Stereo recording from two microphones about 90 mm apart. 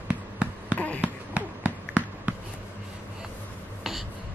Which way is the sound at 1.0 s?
15° right (ahead or behind).